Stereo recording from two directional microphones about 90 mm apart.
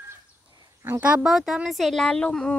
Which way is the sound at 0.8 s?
25° right (ahead or behind).